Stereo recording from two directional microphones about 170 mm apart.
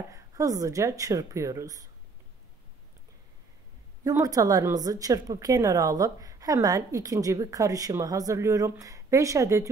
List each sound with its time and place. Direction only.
0.1 s a woman's voice: 20° right (ahead or behind)
4.0 s a woman's voice: 20° right (ahead or behind)